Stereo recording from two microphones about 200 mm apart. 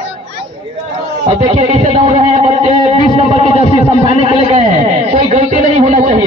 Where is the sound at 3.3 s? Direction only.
30° left (ahead or behind).